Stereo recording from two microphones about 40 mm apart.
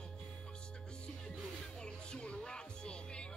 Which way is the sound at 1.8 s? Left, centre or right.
Left.